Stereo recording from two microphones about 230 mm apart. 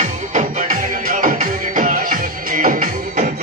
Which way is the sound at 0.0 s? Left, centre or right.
Right.